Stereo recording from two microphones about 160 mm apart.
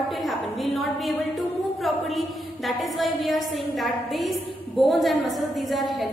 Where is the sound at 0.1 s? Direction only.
Centre (ahead or behind).